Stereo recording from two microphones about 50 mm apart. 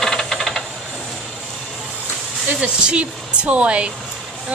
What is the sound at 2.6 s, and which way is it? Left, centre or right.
Speech, right.